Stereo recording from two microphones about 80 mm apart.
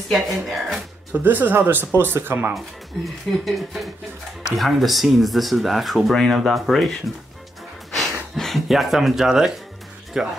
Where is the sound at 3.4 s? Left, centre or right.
Centre.